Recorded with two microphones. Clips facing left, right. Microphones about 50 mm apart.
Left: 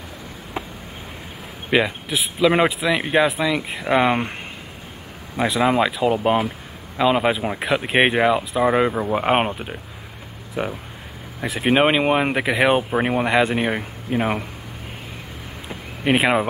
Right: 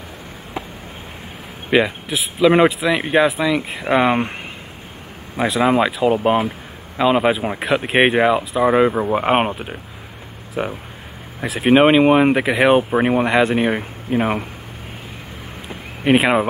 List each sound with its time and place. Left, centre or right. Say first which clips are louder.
1.7 s speech: right 3 dB; centre
11.4 s speech: right 4 dB; centre
16.0 s speech: right 3 dB; centre